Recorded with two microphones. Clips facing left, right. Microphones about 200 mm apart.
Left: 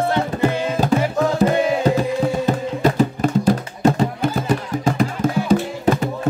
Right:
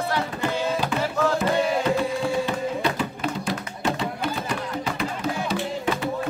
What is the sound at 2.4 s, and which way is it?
Music, 45° left (ahead or behind).